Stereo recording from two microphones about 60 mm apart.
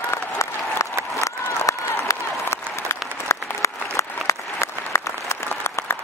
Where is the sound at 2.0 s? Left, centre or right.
Left.